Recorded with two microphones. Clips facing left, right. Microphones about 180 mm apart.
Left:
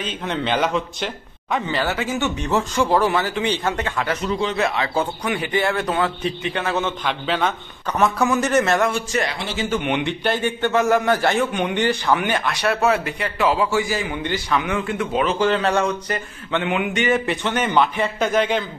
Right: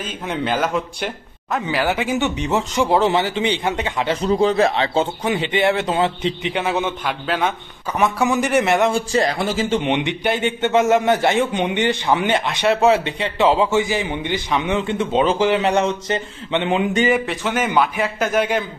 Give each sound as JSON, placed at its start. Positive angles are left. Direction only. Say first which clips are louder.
{"t": 0.0, "sound": "speech", "louder": "even", "side_deg": -5}
{"t": 4.2, "sound": "a man's voice", "louder": "right 8 dB", "side_deg": -35}
{"t": 8.9, "sound": "speech", "louder": "right 4 dB", "side_deg": -30}
{"t": 9.4, "sound": "speech", "louder": "right 5 dB", "side_deg": -45}
{"t": 9.7, "sound": "a man's voice", "louder": "right 2 dB", "side_deg": -30}
{"t": 17.3, "sound": "speech", "louder": "even", "side_deg": -5}